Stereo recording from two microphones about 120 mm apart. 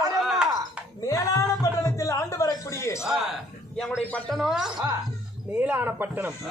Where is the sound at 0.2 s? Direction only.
Centre (ahead or behind).